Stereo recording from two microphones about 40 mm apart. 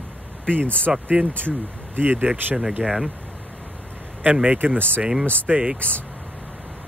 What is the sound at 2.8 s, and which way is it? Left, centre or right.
Speech, centre.